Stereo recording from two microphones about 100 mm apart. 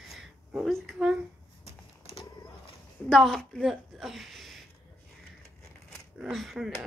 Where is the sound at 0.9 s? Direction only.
5° right (ahead or behind).